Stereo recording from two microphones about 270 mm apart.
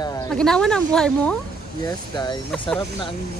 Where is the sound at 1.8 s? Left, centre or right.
Centre.